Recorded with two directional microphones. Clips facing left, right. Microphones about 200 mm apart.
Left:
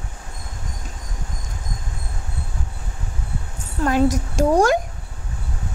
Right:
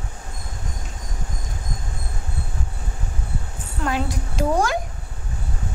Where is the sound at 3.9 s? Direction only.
45° left (ahead or behind).